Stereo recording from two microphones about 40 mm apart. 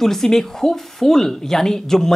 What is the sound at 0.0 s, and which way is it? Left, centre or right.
Speech, centre.